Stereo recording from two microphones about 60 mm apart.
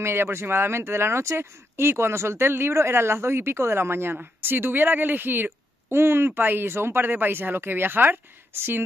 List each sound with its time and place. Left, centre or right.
0.0 s speech: right